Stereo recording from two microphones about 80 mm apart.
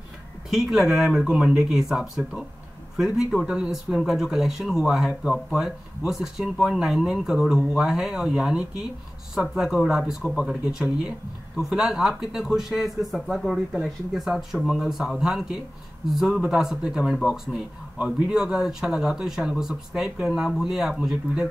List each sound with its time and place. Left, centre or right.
0.5 s speech: centre